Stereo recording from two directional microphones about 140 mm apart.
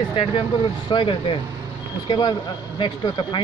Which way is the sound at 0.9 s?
35° left (ahead or behind).